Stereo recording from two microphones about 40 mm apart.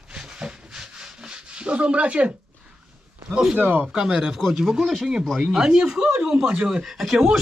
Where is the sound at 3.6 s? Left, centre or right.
Right.